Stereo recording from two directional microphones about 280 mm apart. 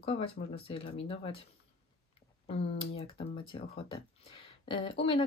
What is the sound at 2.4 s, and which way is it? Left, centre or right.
Speech, left.